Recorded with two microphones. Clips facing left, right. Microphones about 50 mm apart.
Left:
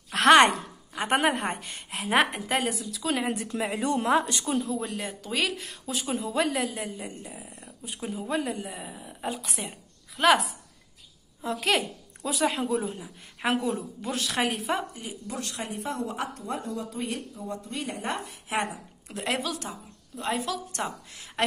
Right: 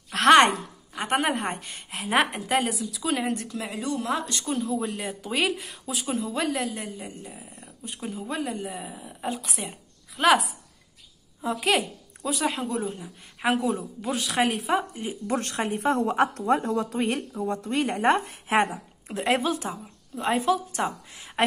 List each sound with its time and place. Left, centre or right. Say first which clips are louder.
0.1 s a sound: right 1 dB; centre
0.9 s speech: left 1 dB; centre
3.7 s speech: left 4 dB; left
4.3 s speech: even; centre
4.6 s speech: right 1 dB; centre
15.2 s speech: right 8 dB; right
18.6 s speech: right 6 dB; right
19.1 s a woman's voice: right 6 dB; centre